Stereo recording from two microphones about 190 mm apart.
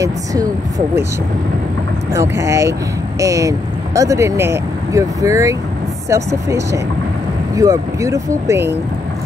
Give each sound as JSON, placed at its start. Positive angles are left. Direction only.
{"t": 0.0, "sound": "speech", "side_deg": -20}
{"t": 2.1, "sound": "speech", "side_deg": -15}